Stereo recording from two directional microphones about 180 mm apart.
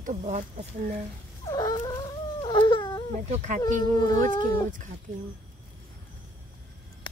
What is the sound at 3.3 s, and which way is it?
Speech, 40° right (ahead or behind).